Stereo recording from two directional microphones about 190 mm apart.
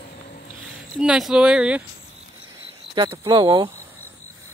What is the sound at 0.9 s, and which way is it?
Speech, centre (ahead or behind).